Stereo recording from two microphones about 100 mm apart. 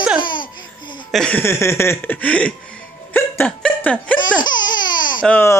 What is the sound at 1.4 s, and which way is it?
Music, 25° left (ahead or behind).